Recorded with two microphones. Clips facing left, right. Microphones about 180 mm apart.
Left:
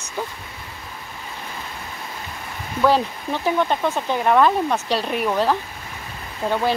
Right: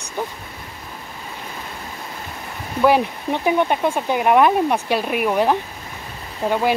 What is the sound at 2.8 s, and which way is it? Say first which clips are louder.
Speech: right 2 dB; 15° right (ahead or behind).